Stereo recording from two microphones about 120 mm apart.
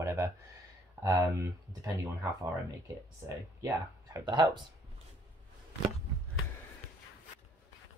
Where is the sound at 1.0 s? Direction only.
20° right (ahead or behind).